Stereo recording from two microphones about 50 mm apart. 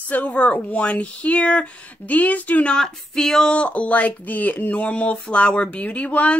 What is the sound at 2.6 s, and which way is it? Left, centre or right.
Speech, centre.